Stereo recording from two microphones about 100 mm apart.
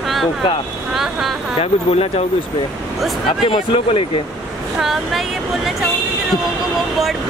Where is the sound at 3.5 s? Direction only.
60° left (ahead or behind).